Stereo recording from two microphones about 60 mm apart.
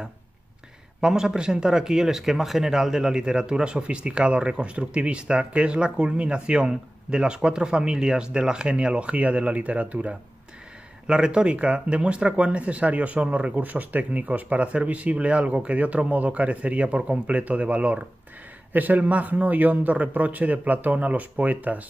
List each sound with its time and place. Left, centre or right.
1.0 s speech: centre